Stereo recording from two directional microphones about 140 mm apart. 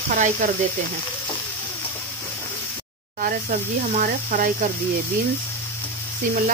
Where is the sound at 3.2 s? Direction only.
80° right.